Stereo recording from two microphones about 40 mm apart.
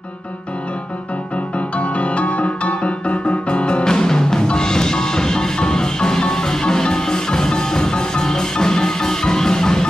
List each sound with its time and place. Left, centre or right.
1.8 s music: left; by 9.8 s centre